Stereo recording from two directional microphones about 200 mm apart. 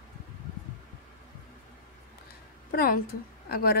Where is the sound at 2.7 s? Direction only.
50° left (ahead or behind).